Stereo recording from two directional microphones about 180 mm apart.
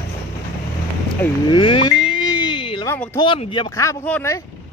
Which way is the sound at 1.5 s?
30° left (ahead or behind).